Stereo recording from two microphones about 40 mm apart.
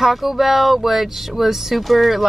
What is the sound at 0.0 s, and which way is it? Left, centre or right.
Speech, centre.